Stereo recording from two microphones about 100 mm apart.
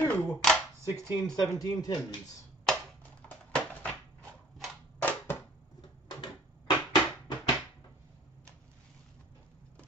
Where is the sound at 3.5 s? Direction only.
15° left (ahead or behind).